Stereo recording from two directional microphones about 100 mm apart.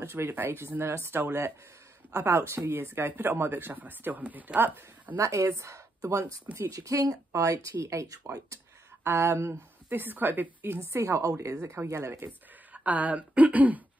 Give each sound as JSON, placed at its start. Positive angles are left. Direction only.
{"t": 0.0, "sound": "speech", "side_deg": -25}
{"t": 5.1, "sound": "speech", "side_deg": -30}
{"t": 6.4, "sound": "speech", "side_deg": -20}
{"t": 6.7, "sound": "speech", "side_deg": -35}
{"t": 12.7, "sound": "speech", "side_deg": -15}